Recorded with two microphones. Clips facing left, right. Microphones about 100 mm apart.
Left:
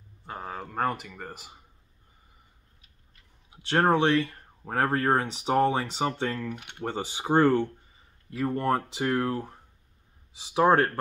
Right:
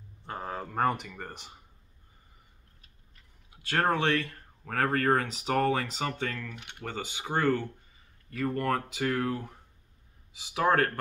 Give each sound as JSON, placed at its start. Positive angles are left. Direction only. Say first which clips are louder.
{"t": 0.3, "sound": "speech", "louder": "even", "side_deg": 0}
{"t": 3.6, "sound": "speech", "louder": "left 4 dB", "side_deg": 20}
{"t": 8.3, "sound": "speech", "louder": "left 3 dB", "side_deg": 20}